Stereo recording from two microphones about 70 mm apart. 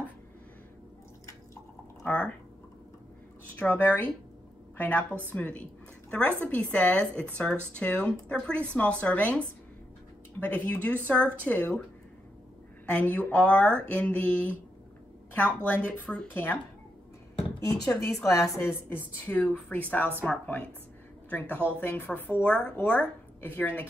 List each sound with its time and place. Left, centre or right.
2.0 s speech: left
3.5 s a woman's voice: left
10.4 s speech: left
12.8 s speech: left
17.6 s speech: left
18.7 s speech: left